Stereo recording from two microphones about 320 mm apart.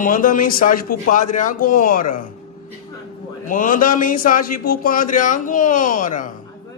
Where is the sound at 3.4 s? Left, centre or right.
Left.